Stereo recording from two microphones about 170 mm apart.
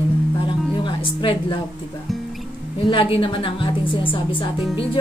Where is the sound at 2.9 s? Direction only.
30° left (ahead or behind).